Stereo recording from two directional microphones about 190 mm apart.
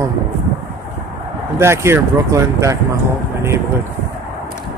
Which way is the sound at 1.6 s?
15° right (ahead or behind).